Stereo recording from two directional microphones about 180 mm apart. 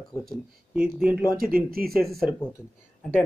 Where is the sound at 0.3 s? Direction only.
Centre (ahead or behind).